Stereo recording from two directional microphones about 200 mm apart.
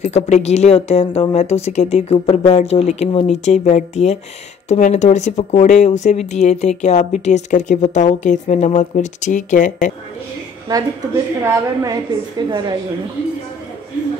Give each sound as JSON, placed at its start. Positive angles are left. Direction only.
{"t": 0.0, "sound": "speech", "side_deg": 35}
{"t": 10.7, "sound": "a woman's voice", "side_deg": -15}